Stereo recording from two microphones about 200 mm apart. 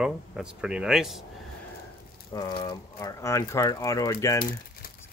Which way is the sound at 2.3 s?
20° left (ahead or behind).